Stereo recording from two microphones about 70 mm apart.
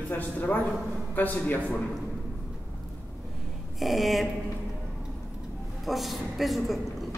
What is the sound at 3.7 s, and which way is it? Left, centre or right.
Speech, centre.